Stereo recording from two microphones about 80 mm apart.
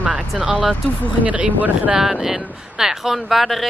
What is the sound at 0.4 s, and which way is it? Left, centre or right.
Speech, centre.